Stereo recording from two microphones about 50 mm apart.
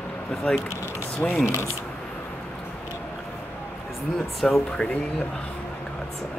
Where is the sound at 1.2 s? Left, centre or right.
Left.